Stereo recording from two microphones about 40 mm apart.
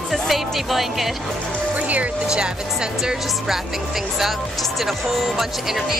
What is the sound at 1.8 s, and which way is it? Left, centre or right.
Music, right.